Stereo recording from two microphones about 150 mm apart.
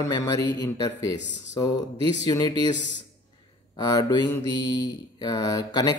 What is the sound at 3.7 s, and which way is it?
Speech, 30° left (ahead or behind).